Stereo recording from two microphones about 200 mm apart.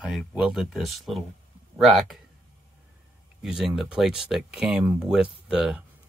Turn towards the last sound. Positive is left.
turn(degrees=-5)  # may be behind; listen again after turning